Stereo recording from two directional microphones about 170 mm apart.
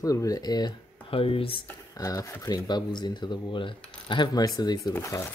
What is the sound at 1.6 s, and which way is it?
Speech, 20° left (ahead or behind).